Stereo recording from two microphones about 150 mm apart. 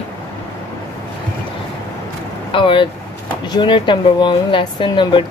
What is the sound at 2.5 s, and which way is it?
Speech, 35° left (ahead or behind).